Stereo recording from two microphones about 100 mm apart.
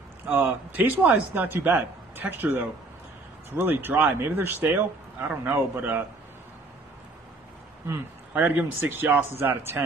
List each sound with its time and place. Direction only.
0.3 s speech: 20° right (ahead or behind)
7.9 s speech: 20° right (ahead or behind)